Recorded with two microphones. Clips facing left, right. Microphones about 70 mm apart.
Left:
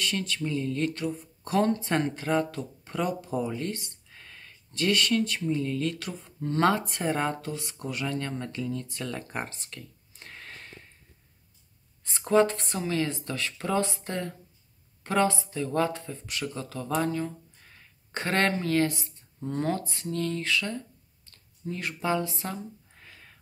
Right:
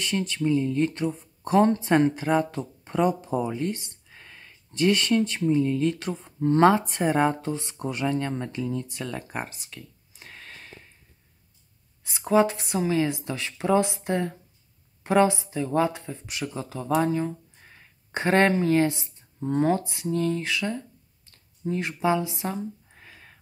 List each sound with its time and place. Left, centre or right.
0.0 s speech: right
2.1 s speech: centre
2.5 s speech: right
7.4 s speech: right; by 10.9 s centre
12.0 s speech: centre
21.3 s a sound: right